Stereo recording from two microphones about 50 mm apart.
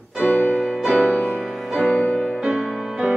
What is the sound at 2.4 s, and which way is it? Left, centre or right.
Music, centre.